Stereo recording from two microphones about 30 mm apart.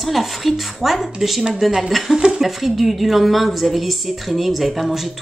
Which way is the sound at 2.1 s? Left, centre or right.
Right.